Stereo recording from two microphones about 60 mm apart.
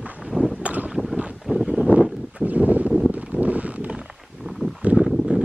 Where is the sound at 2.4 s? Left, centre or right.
Right.